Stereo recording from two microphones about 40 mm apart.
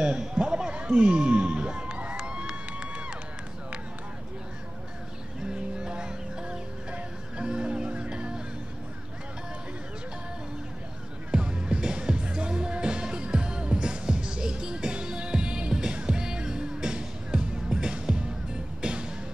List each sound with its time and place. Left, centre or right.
0.2 s a sound: centre
2.1 s crowd: right
5.5 s music: right
11.3 s music: right